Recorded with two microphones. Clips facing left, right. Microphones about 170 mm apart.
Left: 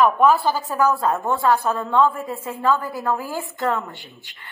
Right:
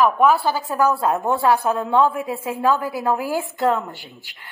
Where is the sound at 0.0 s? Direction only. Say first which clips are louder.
Even; 5° right (ahead or behind).